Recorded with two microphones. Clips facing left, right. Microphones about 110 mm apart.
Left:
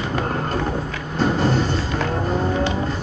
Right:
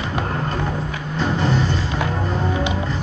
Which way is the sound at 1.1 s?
40° left (ahead or behind).